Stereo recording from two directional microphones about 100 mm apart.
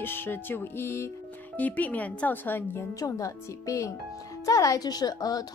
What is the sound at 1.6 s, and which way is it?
Speech, 15° left (ahead or behind).